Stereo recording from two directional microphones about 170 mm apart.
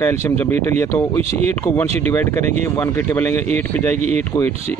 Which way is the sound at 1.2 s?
40° right (ahead or behind).